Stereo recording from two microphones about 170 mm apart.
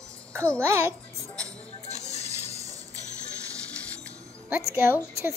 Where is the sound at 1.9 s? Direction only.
40° left (ahead or behind).